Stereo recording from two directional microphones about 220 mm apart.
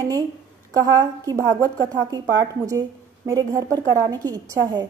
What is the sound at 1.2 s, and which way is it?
A woman's voice, 15° right (ahead or behind).